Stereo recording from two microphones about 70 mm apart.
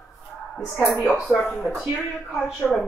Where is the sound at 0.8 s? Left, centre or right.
Left.